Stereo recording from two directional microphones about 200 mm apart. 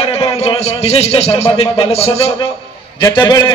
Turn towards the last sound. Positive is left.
turn(degrees=20)  # may be behind; listen again after turning